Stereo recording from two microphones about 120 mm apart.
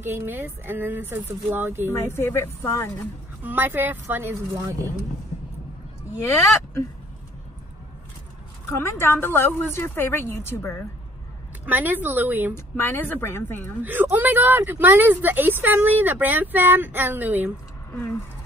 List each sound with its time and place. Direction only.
0.0 s speech: 20° right (ahead or behind)
1.9 s a woman's voice: 20° left (ahead or behind)
3.4 s speech: 15° right (ahead or behind)
6.2 s a woman's voice: 25° left (ahead or behind)
8.8 s a woman's voice: 20° left (ahead or behind)
11.6 s speech: 15° right (ahead or behind)
12.5 s a woman's voice: 20° left (ahead or behind)
13.8 s speech: 15° right (ahead or behind)